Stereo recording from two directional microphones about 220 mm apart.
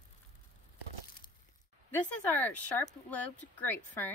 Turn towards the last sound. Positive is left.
turn(degrees=10)  # may be behind; listen again after turning